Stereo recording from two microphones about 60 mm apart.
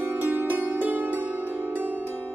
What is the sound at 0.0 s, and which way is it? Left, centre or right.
Music, right.